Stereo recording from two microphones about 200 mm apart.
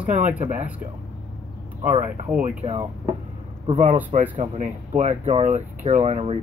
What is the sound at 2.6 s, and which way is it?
Speech, 30° right (ahead or behind).